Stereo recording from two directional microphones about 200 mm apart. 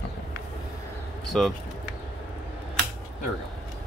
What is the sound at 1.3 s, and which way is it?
Speech, 5° left (ahead or behind).